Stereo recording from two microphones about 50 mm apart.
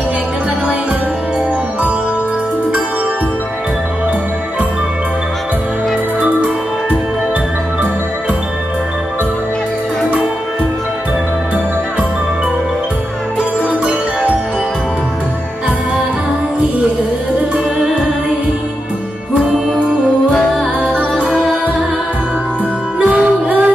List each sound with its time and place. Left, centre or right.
21.2 s music: centre
22.9 s music: right